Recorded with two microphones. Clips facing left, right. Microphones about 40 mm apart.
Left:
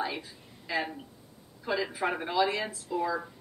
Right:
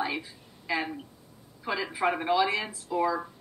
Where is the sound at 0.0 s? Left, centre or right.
Centre.